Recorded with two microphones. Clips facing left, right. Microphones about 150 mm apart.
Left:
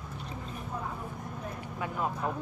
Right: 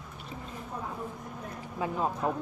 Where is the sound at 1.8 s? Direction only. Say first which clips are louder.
Right 3 dB; 25° right (ahead or behind).